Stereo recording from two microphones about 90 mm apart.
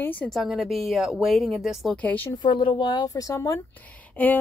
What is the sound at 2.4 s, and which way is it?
Speech, 65° left (ahead or behind).